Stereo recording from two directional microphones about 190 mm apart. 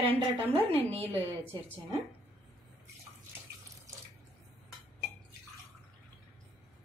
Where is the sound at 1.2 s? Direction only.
10° left (ahead or behind).